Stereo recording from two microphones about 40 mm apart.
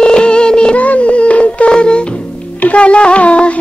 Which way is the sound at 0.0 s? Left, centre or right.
Left.